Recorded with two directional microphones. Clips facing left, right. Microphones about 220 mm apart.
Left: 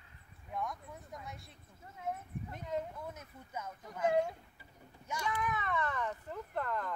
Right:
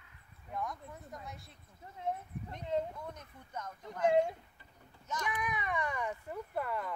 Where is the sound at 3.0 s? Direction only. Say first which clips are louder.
Even; 5° left (ahead or behind).